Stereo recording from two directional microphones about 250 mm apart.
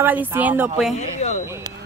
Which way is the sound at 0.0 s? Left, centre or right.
Centre.